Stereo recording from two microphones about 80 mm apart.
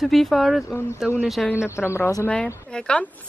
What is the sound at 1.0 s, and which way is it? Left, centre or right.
Speech, centre.